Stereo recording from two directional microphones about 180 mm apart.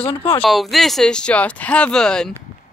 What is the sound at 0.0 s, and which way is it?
Speech, 30° left (ahead or behind).